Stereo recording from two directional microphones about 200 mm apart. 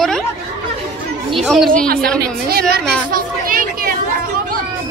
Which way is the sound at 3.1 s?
45° right (ahead or behind).